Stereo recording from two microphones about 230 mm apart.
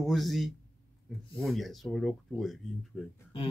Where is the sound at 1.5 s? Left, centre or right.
Centre.